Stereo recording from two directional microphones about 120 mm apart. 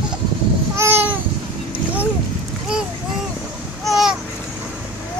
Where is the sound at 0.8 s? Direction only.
20° right (ahead or behind).